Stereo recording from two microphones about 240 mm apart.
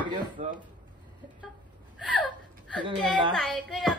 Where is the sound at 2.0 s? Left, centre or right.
Centre.